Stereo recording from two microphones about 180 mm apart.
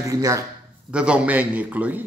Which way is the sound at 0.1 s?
15° right (ahead or behind).